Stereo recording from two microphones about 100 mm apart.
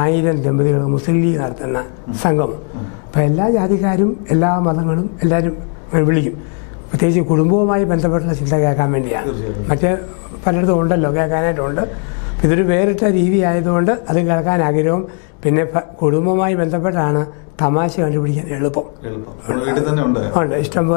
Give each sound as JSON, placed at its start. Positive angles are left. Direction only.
{"t": 0.0, "sound": "a man's voice", "side_deg": 15}